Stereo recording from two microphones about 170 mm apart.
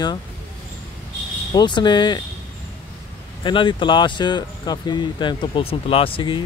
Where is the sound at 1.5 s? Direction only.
25° left (ahead or behind).